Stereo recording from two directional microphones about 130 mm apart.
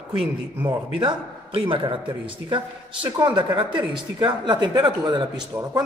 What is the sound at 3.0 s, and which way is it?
A woman's voice, 30° right (ahead or behind).